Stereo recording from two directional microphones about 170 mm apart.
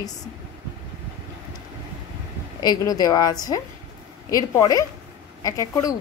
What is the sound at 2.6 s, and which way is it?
A woman's voice, 20° left (ahead or behind).